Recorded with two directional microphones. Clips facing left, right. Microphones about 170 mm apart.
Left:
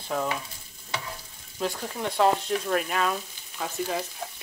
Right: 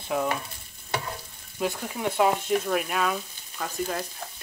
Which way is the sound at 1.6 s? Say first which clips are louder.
Right 2 dB; 10° right (ahead or behind).